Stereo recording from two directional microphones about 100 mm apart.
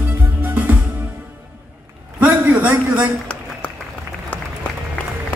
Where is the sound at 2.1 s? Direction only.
15° right (ahead or behind).